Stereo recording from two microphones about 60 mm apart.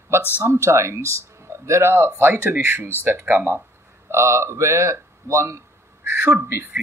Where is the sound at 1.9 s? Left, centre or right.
Right.